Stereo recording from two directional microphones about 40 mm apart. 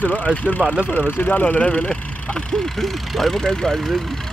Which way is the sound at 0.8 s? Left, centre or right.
Left.